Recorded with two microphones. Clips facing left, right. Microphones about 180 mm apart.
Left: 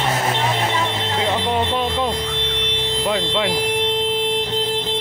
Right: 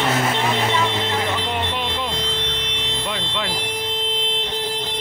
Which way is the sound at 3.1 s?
25° left (ahead or behind).